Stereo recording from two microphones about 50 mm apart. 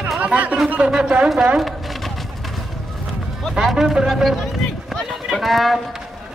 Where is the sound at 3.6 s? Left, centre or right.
Centre.